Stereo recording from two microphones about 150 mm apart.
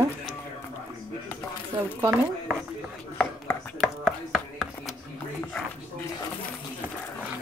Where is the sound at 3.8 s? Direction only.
Centre (ahead or behind).